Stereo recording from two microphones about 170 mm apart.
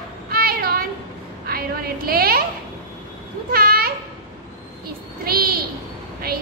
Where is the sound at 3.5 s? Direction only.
60° right (ahead or behind).